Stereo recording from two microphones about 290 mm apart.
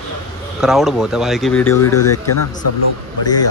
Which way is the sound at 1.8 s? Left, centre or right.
Left.